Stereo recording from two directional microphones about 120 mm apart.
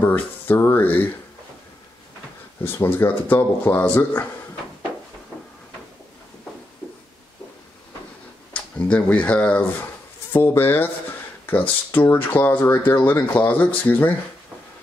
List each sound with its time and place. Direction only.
0.0 s speech: 15° left (ahead or behind)
2.6 s speech: 20° left (ahead or behind)
8.5 s speech: 10° left (ahead or behind)